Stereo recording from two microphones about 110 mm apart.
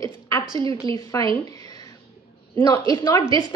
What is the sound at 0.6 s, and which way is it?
Speech, 50° right (ahead or behind).